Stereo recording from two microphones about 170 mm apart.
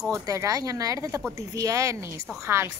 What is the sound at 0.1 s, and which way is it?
A woman's voice, 20° right (ahead or behind).